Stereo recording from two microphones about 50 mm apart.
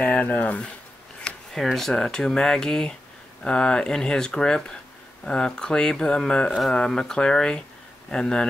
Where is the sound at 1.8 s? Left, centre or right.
Centre.